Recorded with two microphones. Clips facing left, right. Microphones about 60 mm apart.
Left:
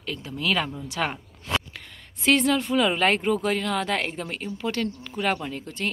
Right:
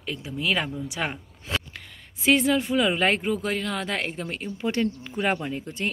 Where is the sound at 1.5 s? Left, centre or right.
Centre.